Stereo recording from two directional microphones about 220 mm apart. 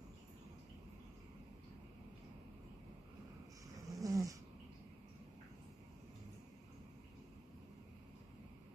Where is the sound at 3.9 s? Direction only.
15° right (ahead or behind).